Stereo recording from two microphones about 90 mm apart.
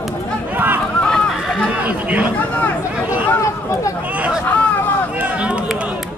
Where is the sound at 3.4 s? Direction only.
35° left (ahead or behind).